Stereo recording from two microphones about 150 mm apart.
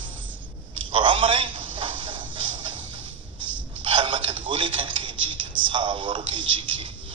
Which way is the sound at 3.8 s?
35° right (ahead or behind).